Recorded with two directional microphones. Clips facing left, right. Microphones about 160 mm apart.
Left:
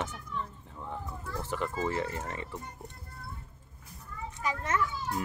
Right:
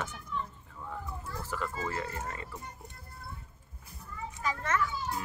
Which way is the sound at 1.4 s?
20° left (ahead or behind).